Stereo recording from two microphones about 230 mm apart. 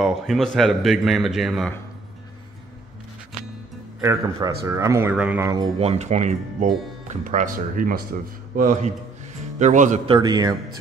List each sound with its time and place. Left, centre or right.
0.0 s a man's voice: centre
4.0 s speech: centre
5.8 s speech: right